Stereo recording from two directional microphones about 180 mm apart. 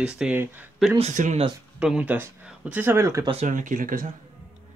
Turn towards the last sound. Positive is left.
turn(degrees=-50)  # may be behind; listen again after turning